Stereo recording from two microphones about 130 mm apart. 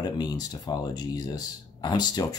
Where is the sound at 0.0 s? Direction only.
30° left (ahead or behind).